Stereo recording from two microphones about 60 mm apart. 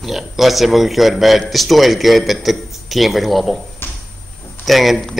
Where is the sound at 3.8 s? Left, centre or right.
Left.